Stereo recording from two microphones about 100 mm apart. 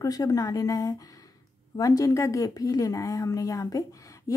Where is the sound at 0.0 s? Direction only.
35° left (ahead or behind).